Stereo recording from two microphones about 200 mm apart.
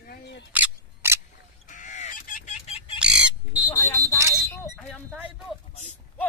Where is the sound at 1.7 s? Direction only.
35° left (ahead or behind).